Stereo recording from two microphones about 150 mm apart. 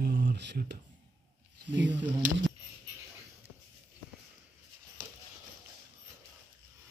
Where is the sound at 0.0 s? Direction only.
90° right.